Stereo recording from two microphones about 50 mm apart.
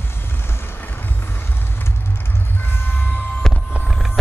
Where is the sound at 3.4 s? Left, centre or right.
Centre.